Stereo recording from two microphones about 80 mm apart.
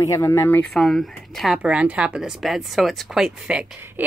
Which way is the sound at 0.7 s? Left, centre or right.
Centre.